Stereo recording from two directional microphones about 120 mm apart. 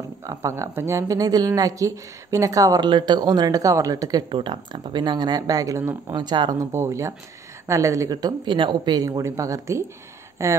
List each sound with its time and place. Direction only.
0.3 s a woman's voice: 25° right (ahead or behind)
6.1 s a woman's voice: 40° right (ahead or behind)